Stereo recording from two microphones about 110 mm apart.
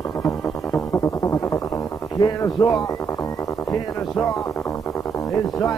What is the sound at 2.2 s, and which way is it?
Speech, 35° left (ahead or behind).